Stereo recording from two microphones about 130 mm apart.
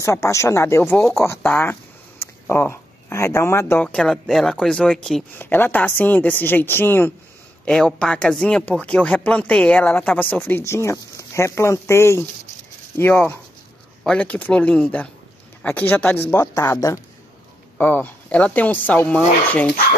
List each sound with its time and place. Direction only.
0.0 s speech: 25° left (ahead or behind)
3.8 s speech: 5° left (ahead or behind)
5.4 s speech: 15° left (ahead or behind)
17.7 s speech: 15° left (ahead or behind)